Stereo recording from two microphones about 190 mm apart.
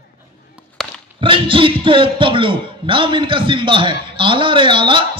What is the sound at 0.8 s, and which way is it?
Chop, centre (ahead or behind).